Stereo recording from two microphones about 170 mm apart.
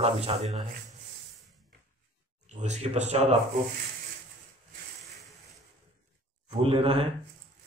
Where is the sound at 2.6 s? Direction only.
40° right (ahead or behind).